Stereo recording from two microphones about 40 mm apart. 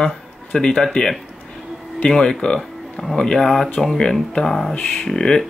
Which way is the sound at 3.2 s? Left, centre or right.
Centre.